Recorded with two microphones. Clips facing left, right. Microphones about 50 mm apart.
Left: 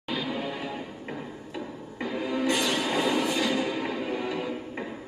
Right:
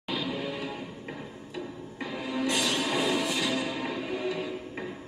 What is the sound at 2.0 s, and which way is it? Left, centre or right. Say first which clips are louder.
Music: left 3 dB; left.